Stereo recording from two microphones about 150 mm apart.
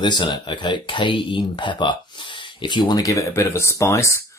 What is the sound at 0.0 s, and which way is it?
Speech, 30° left (ahead or behind).